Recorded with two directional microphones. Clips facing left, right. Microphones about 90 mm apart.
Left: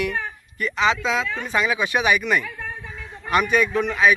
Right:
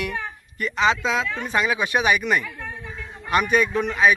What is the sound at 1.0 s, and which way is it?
Speech, centre (ahead or behind).